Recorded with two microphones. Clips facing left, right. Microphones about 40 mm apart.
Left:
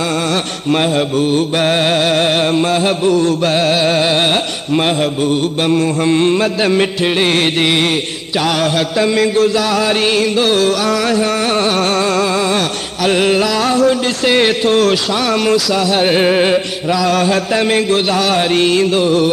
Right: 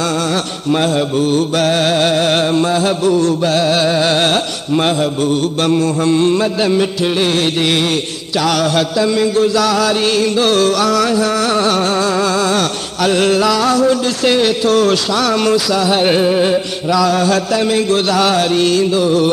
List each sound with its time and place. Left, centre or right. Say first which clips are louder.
1.6 s chant: left 1 dB; left
2.4 s music: even; left
3.2 s chant: even; left
4.0 s music: even; centre
6.0 s music: even; left
9.6 s chant: right 1 dB; left
10.4 s music: right 1 dB; centre
11.1 s music: even; left
12.2 s chant: even; left
13.6 s music: even; left
17.6 s music: left 1 dB; left